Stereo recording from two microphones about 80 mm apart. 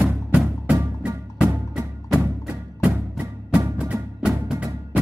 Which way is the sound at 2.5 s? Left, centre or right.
Centre.